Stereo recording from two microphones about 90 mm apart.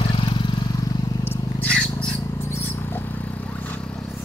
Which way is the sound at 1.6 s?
10° left (ahead or behind).